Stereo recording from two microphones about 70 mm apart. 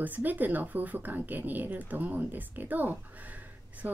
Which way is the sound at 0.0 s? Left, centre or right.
Right.